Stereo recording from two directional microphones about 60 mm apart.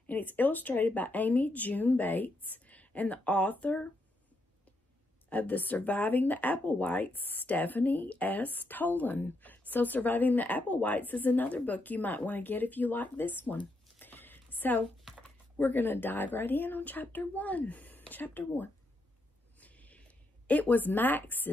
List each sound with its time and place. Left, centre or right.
0.0 s speech: left
5.3 s speech: left
19.6 s a sound: left
20.4 s speech: left